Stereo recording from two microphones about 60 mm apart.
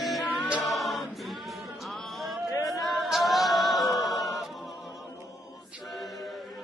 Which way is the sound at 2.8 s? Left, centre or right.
Centre.